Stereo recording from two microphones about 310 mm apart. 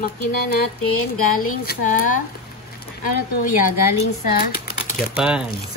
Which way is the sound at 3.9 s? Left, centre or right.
Left.